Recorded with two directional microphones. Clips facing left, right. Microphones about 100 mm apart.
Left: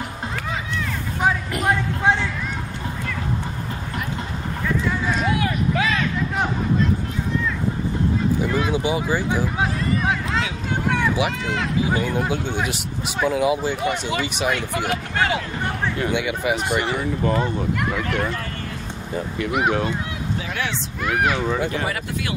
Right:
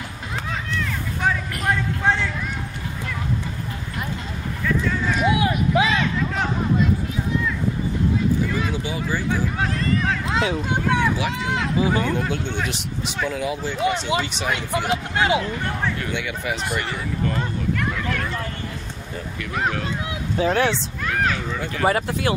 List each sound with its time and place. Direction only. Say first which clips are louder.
1.2 s music: left 2 dB; 20° left (ahead or behind)
5.2 s a sound: right 5 dB; 20° right (ahead or behind)
8.6 s speech: left 4 dB; 15° left (ahead or behind)
10.3 s speech: right 3 dB; 20° right (ahead or behind)
11.9 s speech: even; 15° left (ahead or behind)
14.9 s speech: right 2 dB; 20° right (ahead or behind)
15.6 s speech: left 2 dB; 20° left (ahead or behind)
19.1 s speech: left 5 dB; 20° left (ahead or behind)
20.3 s speech: right 11 dB; 35° right (ahead or behind)
21.0 s speech: left 3 dB; 15° left (ahead or behind)
21.8 s speech: right 6 dB; 35° right (ahead or behind)